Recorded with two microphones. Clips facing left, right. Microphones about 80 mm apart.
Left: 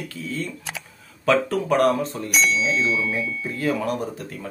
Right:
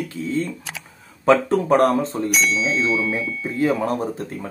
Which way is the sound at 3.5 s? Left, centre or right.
Right.